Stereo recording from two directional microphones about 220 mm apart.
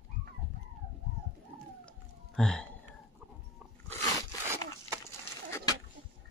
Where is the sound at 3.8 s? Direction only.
15° left (ahead or behind).